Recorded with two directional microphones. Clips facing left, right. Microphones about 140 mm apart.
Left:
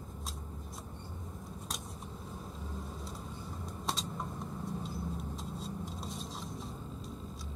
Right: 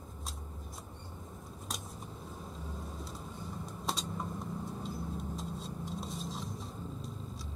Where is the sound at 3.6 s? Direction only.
Centre (ahead or behind).